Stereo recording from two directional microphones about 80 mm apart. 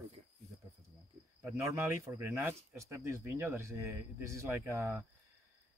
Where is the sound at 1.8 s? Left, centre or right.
Right.